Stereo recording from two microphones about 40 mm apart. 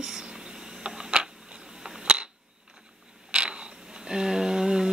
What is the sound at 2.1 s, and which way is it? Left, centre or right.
Camera, centre.